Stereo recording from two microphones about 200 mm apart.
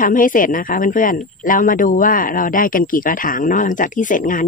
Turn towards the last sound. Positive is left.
turn(degrees=40)  # may be behind; listen again after turning